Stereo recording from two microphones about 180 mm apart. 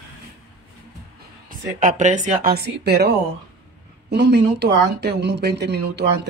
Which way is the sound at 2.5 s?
65° right (ahead or behind).